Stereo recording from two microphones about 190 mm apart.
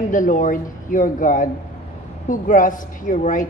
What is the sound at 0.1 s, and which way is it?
A woman's voice, 45° left (ahead or behind).